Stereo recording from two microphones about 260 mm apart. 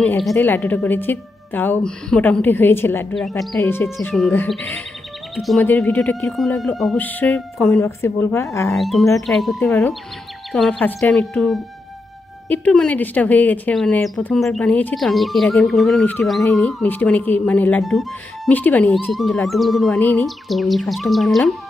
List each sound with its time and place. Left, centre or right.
0.0 s a woman's voice: centre
8.7 s speech: centre